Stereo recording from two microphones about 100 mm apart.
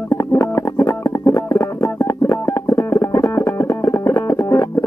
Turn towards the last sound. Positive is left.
turn(degrees=30)  # may be behind; listen again after turning